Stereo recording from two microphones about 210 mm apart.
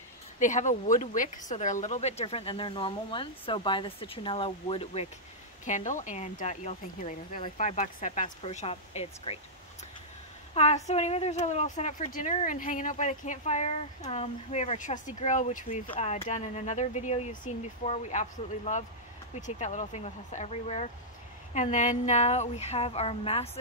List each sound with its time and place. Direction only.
0.4 s speech: 35° left (ahead or behind)
10.5 s speech: 30° left (ahead or behind)